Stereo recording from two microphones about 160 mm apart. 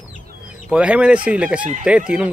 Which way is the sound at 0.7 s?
5° right (ahead or behind).